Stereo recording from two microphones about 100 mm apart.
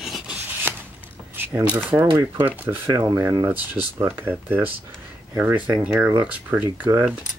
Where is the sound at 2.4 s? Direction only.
20° right (ahead or behind).